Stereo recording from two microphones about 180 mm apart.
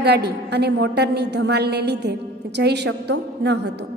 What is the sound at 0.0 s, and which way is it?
A woman's voice, 65° right (ahead or behind).